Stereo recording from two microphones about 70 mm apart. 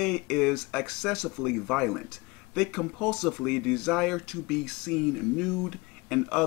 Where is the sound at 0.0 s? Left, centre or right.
Centre.